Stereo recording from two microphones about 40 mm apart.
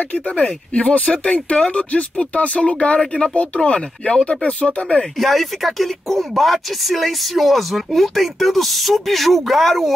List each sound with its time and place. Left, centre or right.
0.1 s speech: left
5.2 s speech: centre